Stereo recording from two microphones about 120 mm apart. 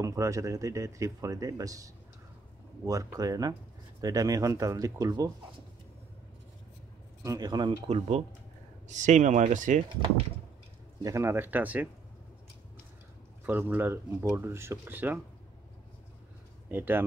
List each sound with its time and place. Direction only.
0.0 s speech: 25° right (ahead or behind)
7.2 s speech: 35° right (ahead or behind)
8.8 s speech: 85° right
11.0 s speech: 25° right (ahead or behind)
13.5 s speech: 15° right (ahead or behind)
16.7 s speech: 15° right (ahead or behind)